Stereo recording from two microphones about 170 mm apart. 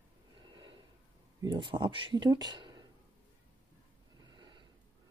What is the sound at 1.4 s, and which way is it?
Speech, 25° right (ahead or behind).